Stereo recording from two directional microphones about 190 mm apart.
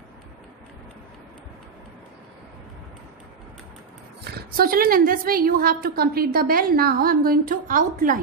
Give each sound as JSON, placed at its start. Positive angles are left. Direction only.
{"t": 4.2, "sound": "a woman's voice", "side_deg": -50}